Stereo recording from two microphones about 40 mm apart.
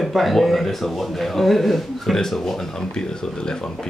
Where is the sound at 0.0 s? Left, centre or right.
Centre.